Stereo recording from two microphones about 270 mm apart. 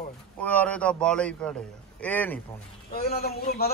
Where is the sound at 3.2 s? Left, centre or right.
Left.